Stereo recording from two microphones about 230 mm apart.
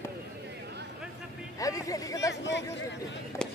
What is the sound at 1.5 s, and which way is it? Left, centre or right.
Speech, centre.